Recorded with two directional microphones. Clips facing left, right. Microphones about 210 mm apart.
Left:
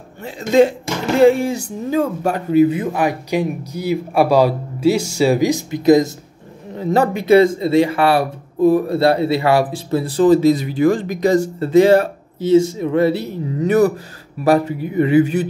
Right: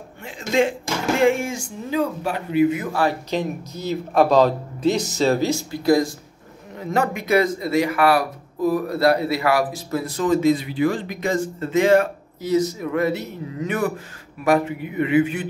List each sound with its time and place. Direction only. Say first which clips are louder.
0.2 s a man's voice: left 7 dB; 40° left (ahead or behind); by 6.1 s 20° left (ahead or behind)
6.7 s a man's voice: left 6 dB; 30° left (ahead or behind)